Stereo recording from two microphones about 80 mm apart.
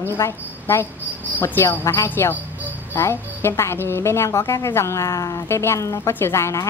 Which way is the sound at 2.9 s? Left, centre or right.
Left.